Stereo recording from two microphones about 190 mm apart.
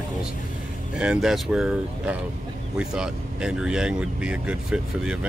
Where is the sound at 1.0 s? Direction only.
5° right (ahead or behind).